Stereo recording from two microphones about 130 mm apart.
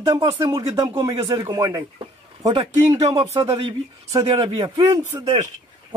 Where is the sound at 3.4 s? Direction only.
40° right (ahead or behind).